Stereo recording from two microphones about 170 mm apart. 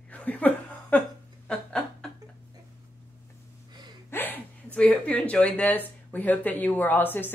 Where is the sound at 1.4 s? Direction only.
5° left (ahead or behind).